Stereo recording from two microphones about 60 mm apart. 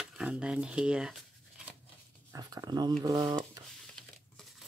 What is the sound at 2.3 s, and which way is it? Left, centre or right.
Speech, right.